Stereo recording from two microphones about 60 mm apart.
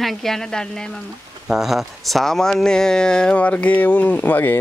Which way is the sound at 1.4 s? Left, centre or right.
Centre.